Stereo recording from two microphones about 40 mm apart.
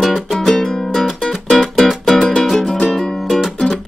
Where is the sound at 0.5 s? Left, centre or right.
Centre.